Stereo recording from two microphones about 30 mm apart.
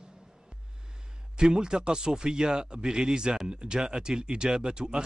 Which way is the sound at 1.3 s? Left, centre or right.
Right.